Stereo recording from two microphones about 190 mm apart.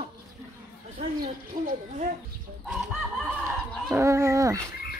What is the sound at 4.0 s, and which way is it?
Speech, 15° right (ahead or behind).